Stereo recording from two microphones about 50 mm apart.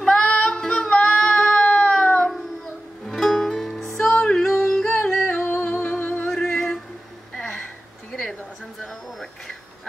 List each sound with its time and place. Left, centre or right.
0.0 s music: centre
1.6 s cat: left
3.1 s music: centre
4.8 s music: left
6.3 s a sound: centre